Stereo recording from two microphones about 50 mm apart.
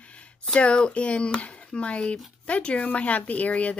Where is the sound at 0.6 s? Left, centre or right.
Left.